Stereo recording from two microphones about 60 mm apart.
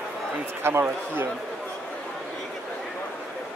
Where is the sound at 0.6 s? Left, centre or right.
Right.